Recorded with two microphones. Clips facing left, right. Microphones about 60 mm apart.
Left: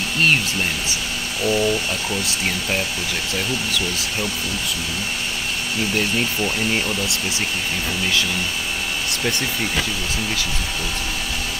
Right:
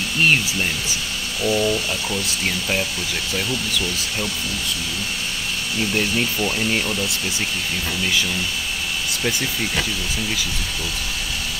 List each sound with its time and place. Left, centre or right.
0.3 s speech: centre
5.9 s speech: centre
9.1 s speech: centre